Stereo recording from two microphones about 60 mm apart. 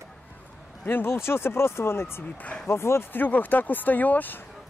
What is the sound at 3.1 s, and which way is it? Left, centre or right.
Speech, left.